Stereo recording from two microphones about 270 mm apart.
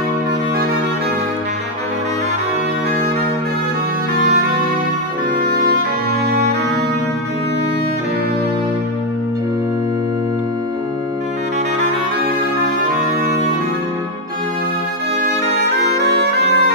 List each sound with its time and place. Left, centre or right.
16.0 s music: right